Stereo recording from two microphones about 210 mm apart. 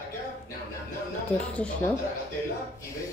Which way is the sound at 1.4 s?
5° left (ahead or behind).